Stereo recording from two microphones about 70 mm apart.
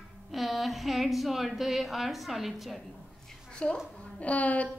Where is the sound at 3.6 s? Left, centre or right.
Centre.